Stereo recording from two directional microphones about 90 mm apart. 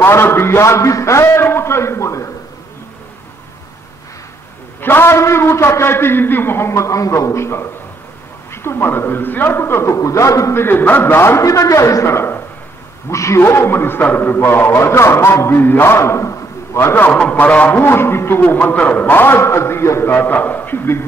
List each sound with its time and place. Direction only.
0.0 s a man's voice: 25° left (ahead or behind)
4.7 s a man's voice: 25° left (ahead or behind)
10.6 s a man's voice: 20° left (ahead or behind)
17.1 s a man's voice: 15° left (ahead or behind)